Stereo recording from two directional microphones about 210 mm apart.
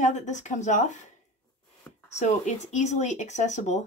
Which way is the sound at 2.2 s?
35° left (ahead or behind).